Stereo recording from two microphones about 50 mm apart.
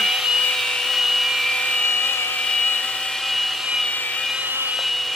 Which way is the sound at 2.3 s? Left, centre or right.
Centre.